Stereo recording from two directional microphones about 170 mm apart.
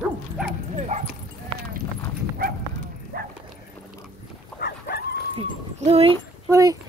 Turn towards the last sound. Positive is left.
turn(degrees=-20)  # may be behind; listen again after turning